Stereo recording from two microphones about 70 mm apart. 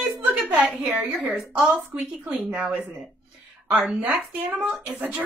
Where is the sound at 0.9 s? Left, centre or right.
Centre.